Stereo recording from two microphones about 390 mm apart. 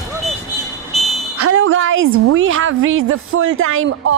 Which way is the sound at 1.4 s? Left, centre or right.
Right.